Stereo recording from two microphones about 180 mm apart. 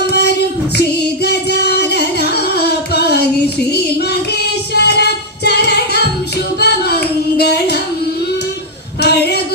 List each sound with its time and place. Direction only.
0.0 s child singing: 65° left (ahead or behind)
4.7 s music: 65° left (ahead or behind)
6.6 s singing: 65° left (ahead or behind)
9.0 s a sound: 65° left (ahead or behind)